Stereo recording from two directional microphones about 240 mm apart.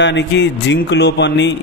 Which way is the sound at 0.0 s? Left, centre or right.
Left.